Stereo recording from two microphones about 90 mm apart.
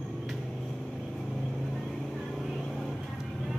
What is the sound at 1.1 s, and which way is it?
Vehicle, centre (ahead or behind).